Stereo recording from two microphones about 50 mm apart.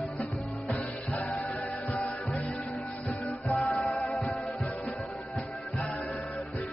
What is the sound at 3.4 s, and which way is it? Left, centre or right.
Music, left.